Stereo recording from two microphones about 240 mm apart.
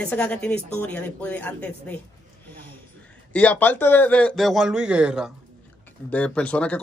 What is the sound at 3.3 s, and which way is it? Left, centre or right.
Speech, centre.